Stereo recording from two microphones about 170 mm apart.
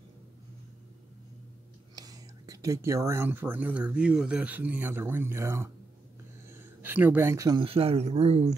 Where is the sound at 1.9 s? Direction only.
20° right (ahead or behind).